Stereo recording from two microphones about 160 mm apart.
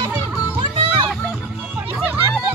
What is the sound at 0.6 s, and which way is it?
Music, 30° right (ahead or behind).